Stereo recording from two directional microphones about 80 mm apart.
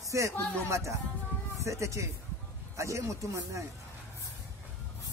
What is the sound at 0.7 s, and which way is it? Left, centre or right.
A man's voice, right.